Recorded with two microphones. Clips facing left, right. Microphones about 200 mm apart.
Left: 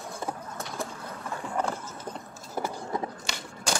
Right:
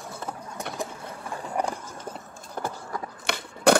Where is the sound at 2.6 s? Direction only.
10° left (ahead or behind).